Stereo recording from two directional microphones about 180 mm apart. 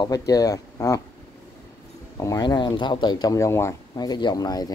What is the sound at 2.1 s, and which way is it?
Speech, 20° left (ahead or behind).